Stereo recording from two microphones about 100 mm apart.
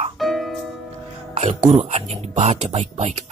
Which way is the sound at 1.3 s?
75° right (ahead or behind).